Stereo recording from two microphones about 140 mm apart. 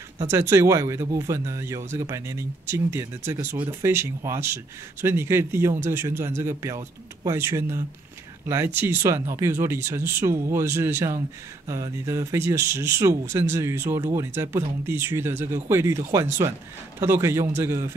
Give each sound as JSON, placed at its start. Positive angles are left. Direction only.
{"t": 0.3, "sound": "speech", "side_deg": -20}